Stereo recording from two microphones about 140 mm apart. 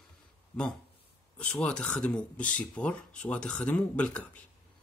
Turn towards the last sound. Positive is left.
turn(degrees=10)  # may be behind; listen again after turning